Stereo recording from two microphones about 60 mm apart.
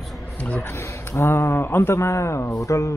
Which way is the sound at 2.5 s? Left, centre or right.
Left.